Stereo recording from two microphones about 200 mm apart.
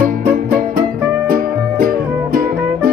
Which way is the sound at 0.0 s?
50° right (ahead or behind).